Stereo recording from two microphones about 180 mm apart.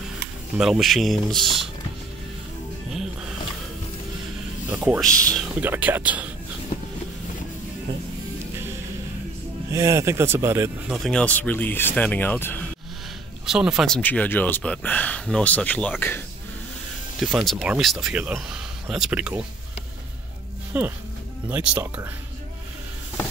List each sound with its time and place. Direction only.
0.6 s speech: centre (ahead or behind)
4.6 s a sound: 10° right (ahead or behind)
5.0 s speech: 5° left (ahead or behind)
5.6 s speech: 10° right (ahead or behind)
6.7 s vehicle: 45° left (ahead or behind)
9.7 s speech: 15° right (ahead or behind)
10.9 s speech: centre (ahead or behind)
13.5 s speech: 5° right (ahead or behind)
17.5 s speech: 5° right (ahead or behind)
20.7 s speech: 10° right (ahead or behind)